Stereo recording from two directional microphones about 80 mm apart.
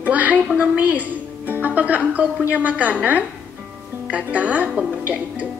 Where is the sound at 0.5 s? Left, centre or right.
Centre.